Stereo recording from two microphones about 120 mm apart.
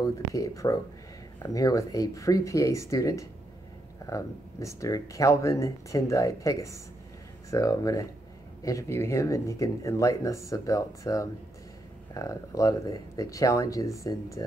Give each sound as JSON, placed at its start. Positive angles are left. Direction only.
{"t": 0.0, "sound": "speech", "side_deg": 30}